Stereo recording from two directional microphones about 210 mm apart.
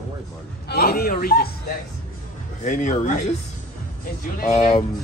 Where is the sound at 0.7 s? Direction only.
45° left (ahead or behind).